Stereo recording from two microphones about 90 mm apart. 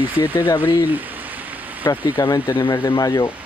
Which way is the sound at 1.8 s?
45° left (ahead or behind).